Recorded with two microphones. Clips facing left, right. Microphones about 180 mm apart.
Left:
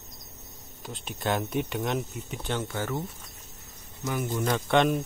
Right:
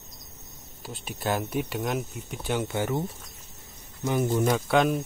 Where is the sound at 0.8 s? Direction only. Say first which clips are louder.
Even; 5° right (ahead or behind).